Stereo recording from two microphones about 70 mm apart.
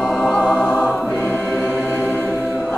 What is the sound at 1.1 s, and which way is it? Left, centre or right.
Choir, centre.